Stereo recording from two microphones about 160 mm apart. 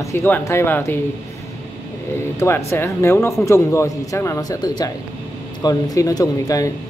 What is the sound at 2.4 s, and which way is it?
Speech, 15° left (ahead or behind).